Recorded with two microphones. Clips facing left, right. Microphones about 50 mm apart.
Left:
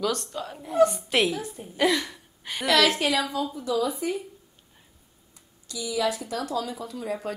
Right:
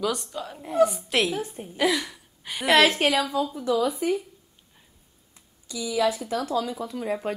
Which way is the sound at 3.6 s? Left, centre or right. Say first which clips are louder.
Right 2 dB; right.